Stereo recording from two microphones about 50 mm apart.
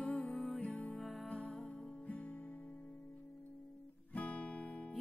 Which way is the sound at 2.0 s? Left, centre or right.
Left.